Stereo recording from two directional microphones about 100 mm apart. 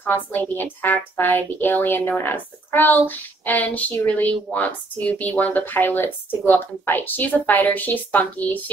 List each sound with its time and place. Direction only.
0.0 s a woman's voice: 20° left (ahead or behind)